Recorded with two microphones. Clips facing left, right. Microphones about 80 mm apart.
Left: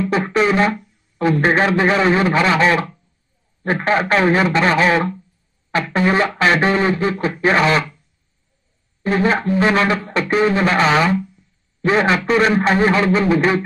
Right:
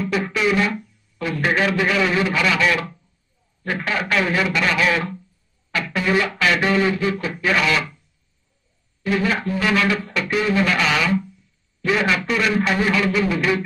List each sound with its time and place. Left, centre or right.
0.1 s speech: left
9.0 s speech: left